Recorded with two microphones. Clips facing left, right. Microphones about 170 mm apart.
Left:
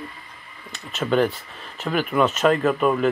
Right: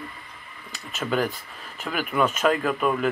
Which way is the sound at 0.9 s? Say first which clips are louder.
Left 5 dB; 5° right (ahead or behind).